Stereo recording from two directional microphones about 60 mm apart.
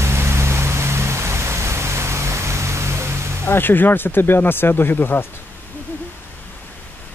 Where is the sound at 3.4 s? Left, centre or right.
Left.